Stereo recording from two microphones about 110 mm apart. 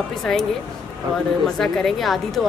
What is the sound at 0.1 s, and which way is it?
Speech, 5° left (ahead or behind).